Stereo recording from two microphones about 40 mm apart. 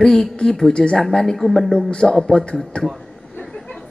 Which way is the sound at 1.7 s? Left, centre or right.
Left.